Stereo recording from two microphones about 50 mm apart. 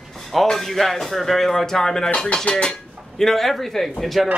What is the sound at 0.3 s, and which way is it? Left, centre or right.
A man's voice, centre.